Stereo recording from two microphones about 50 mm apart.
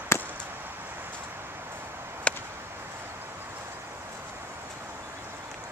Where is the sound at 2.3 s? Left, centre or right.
Left.